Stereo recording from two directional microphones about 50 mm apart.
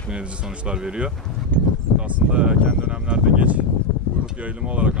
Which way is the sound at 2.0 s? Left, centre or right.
Right.